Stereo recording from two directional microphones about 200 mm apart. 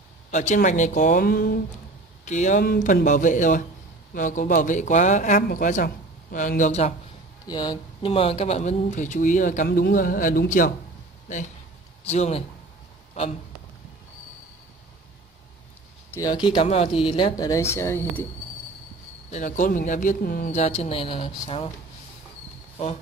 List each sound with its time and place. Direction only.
0.3 s speech: 35° left (ahead or behind)
2.2 s speech: 35° left (ahead or behind)
7.4 s speech: 20° left (ahead or behind); by 10.7 s 45° left (ahead or behind)
12.0 s a man's voice: 30° left (ahead or behind)
16.1 s speech: 15° left (ahead or behind)
16.4 s speech: 30° left (ahead or behind); by 18.2 s 10° left (ahead or behind)
19.3 s speech: 40° left (ahead or behind)
20.6 s speech: 30° left (ahead or behind)